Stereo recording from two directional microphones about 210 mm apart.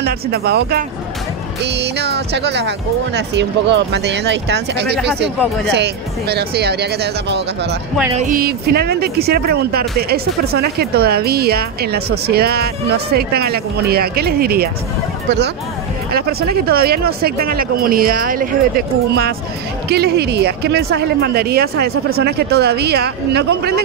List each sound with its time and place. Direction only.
0.0 s speech: 50° right (ahead or behind)
8.2 s speech: 40° right (ahead or behind)
16.1 s speech: 50° right (ahead or behind)